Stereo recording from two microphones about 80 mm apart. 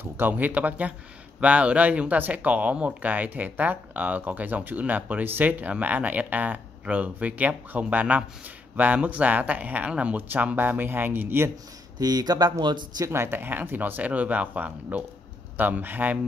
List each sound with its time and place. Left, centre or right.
0.0 s speech: right
12.0 s speech: right
13.0 s speech: right